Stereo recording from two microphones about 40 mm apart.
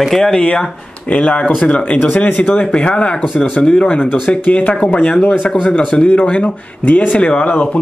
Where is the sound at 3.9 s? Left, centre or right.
Left.